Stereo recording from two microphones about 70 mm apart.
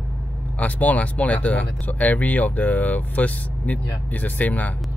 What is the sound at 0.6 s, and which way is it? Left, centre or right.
Speech, left.